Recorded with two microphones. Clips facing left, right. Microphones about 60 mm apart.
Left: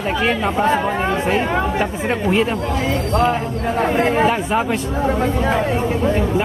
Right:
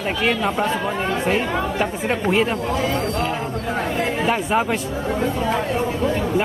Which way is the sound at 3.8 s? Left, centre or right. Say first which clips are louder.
Left 8 dB; left.